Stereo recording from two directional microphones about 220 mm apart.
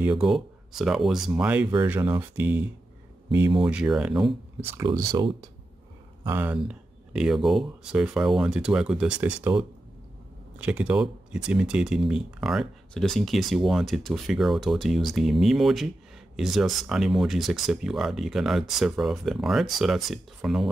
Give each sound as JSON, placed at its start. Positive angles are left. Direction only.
{"t": 0.0, "sound": "speech", "side_deg": -5}
{"t": 3.6, "sound": "speech", "side_deg": -5}